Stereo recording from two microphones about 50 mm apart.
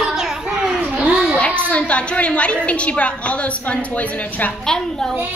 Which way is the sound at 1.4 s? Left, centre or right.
Left.